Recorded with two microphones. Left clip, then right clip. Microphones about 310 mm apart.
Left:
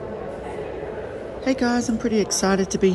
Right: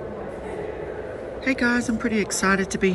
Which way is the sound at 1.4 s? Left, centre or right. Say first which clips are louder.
Even; centre.